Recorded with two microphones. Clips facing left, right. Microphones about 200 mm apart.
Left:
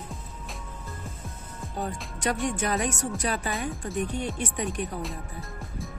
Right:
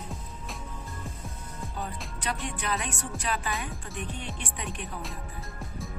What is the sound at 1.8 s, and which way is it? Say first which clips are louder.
Music: left 7 dB; 45° left (ahead or behind).